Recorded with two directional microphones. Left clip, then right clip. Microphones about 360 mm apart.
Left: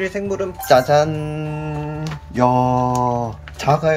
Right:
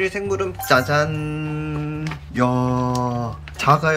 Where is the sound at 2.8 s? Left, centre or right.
Centre.